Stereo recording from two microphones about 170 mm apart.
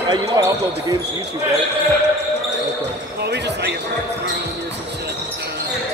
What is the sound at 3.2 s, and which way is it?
Speech, 85° right.